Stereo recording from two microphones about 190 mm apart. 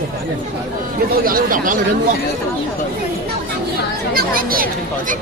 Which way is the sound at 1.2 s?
45° right (ahead or behind).